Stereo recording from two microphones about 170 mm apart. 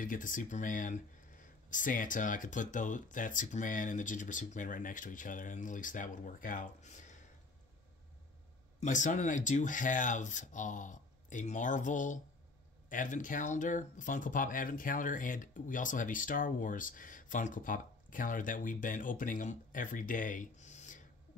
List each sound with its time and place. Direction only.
0.0 s speech: 50° left (ahead or behind)
8.7 s speech: 45° left (ahead or behind)